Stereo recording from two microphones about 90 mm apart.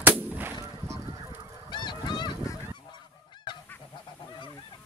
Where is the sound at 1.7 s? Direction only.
55° left (ahead or behind).